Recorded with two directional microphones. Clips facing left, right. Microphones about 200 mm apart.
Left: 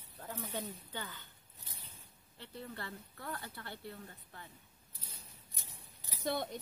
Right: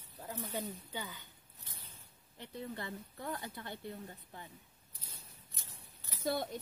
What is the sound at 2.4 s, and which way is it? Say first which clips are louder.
Speech: right 3 dB; 15° right (ahead or behind).